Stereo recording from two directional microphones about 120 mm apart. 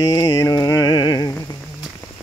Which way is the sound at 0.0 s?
30° left (ahead or behind).